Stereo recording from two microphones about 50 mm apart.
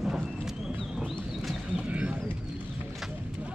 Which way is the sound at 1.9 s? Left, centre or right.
Right.